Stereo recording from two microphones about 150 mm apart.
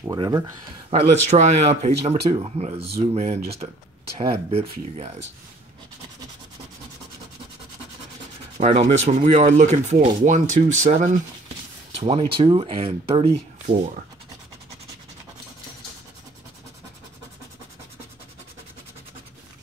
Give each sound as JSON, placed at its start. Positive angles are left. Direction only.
{"t": 0.0, "sound": "speech", "side_deg": -25}
{"t": 0.8, "sound": "speech", "side_deg": -45}
{"t": 8.5, "sound": "speech", "side_deg": -45}
{"t": 12.0, "sound": "speech", "side_deg": -40}